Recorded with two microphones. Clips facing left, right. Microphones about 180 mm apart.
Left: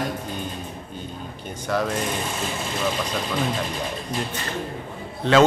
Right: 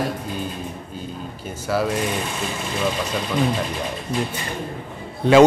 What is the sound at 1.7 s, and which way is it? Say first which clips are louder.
Speech: right 2 dB; 5° right (ahead or behind).